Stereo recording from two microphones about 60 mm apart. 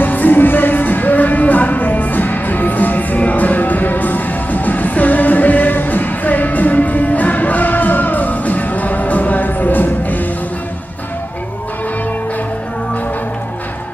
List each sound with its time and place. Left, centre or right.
0.0 s music: left